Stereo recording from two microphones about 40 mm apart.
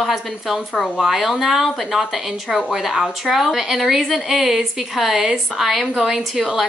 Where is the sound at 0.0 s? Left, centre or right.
Centre.